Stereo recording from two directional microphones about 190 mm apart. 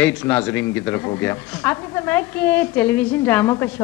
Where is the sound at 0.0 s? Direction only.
5° left (ahead or behind).